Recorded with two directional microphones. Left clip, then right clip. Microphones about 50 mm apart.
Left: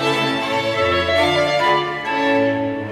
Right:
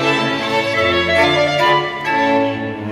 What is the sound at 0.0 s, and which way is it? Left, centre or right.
Music, left.